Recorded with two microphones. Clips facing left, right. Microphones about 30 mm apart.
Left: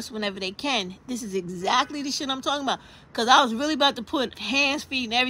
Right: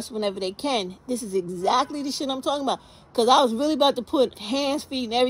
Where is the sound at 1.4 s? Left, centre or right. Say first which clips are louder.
Right 4 dB; left.